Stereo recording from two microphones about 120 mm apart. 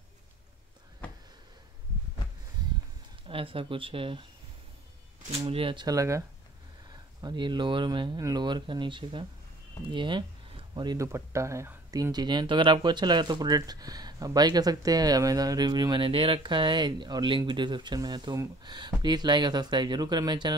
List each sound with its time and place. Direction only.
3.3 s speech: 50° right (ahead or behind)
5.4 s speech: 50° right (ahead or behind)
5.9 s speech: 25° right (ahead or behind)
7.2 s speech: 40° right (ahead or behind)
11.0 s speech: 25° right (ahead or behind)